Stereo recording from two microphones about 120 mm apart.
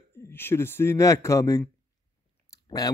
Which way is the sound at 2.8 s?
30° left (ahead or behind).